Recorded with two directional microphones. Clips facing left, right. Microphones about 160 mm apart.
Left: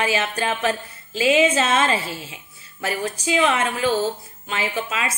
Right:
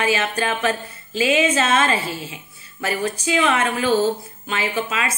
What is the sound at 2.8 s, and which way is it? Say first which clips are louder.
A woman's voice: right 2 dB; 5° left (ahead or behind).